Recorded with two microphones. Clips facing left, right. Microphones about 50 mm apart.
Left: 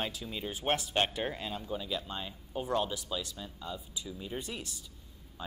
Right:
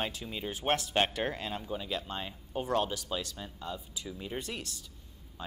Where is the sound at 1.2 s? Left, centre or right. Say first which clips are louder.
Right 2 dB; right.